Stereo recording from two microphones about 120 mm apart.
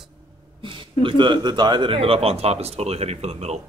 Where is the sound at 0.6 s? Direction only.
45° right (ahead or behind); by 3.6 s 60° right (ahead or behind).